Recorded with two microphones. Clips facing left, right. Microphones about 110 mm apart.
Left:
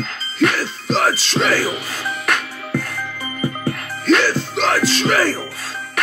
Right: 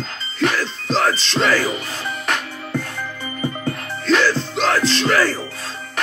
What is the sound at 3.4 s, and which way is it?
Music, 15° left (ahead or behind).